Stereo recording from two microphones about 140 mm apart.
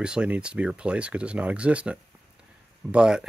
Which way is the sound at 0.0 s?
5° right (ahead or behind).